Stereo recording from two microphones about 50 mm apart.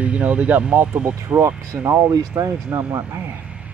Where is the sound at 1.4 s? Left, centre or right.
Right.